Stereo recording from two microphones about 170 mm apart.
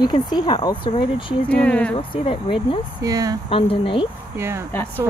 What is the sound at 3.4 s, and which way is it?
Speech, 30° left (ahead or behind).